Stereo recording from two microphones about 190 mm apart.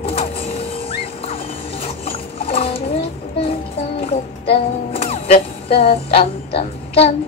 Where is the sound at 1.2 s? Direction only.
30° left (ahead or behind).